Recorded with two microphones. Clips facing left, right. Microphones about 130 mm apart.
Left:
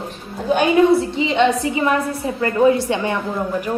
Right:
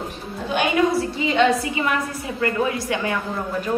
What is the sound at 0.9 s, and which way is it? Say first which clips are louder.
A woman's voice: left 3 dB; 25° left (ahead or behind).